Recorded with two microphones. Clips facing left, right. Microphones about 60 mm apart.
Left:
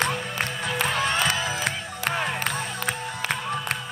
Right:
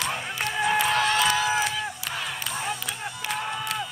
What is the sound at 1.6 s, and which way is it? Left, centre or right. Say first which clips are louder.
Music: left 1 dB; left.